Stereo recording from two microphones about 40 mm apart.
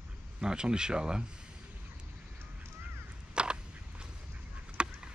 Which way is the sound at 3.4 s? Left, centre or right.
Right.